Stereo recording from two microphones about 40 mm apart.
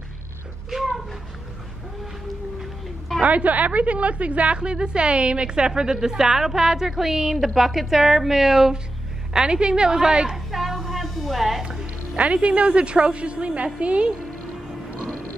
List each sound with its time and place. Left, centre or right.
3.3 s a woman's voice: right; by 10.3 s centre
10.3 s a sound: centre
12.2 s a woman's voice: right